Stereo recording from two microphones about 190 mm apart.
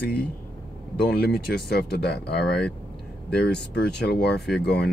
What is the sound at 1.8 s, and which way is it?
Speech, 60° left (ahead or behind).